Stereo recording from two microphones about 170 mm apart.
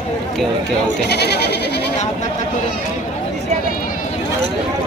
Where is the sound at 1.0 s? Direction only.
75° left (ahead or behind).